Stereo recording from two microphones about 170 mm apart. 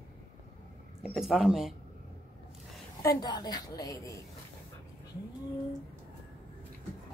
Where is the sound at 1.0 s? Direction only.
Centre (ahead or behind).